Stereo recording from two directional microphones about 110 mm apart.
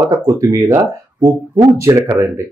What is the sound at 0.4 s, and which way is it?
Speech, 30° right (ahead or behind).